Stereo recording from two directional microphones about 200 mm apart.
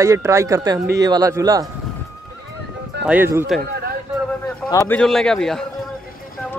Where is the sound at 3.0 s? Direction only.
10° right (ahead or behind).